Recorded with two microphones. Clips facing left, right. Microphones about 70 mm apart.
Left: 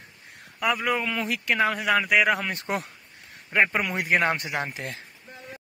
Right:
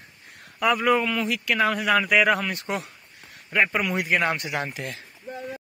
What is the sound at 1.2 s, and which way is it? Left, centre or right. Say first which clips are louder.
Speech: right 1 dB; left.